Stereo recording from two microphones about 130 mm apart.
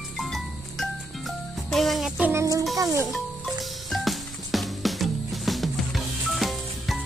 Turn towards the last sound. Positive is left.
turn(degrees=0)  # may be behind; listen again after turning